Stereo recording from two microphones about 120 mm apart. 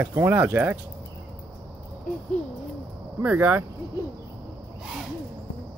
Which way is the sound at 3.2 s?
10° right (ahead or behind).